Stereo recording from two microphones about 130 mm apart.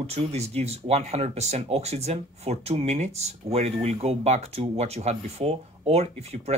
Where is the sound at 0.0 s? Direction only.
55° right (ahead or behind).